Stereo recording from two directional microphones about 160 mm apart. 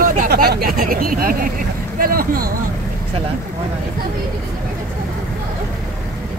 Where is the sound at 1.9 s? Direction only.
65° right (ahead or behind).